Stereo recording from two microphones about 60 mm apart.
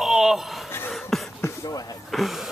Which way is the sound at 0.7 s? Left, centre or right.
Left.